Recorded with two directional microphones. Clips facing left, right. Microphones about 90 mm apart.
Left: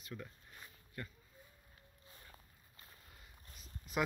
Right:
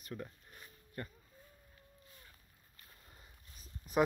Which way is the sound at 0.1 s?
35° right (ahead or behind).